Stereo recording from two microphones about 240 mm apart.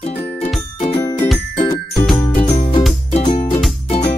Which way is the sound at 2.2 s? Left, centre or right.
Centre.